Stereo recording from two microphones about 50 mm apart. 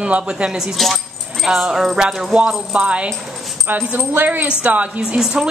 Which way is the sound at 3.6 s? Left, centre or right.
Right.